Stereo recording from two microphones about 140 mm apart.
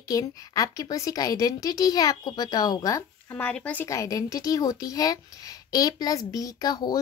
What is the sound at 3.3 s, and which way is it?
Speech, 10° left (ahead or behind).